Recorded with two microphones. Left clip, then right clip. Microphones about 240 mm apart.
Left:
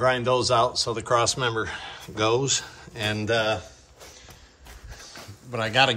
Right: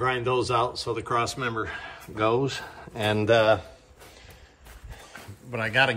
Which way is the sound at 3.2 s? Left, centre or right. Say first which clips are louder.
Right 5 dB; centre.